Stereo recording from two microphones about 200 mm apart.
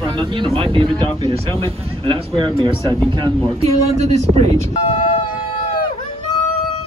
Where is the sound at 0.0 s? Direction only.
25° right (ahead or behind).